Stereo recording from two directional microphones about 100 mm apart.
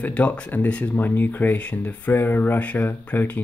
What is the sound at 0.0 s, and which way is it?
Speech, 15° left (ahead or behind).